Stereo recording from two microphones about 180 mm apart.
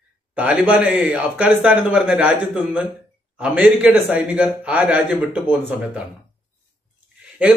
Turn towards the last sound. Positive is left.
turn(degrees=-10)  # may be behind; listen again after turning